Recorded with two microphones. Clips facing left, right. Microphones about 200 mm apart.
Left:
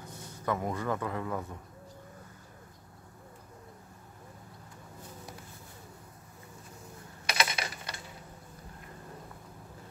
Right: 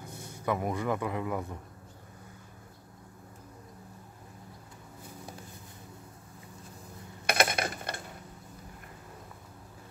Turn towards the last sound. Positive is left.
turn(degrees=-55)  # may be behind; listen again after turning